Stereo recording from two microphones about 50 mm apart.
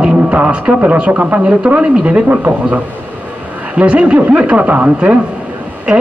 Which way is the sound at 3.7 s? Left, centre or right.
Right.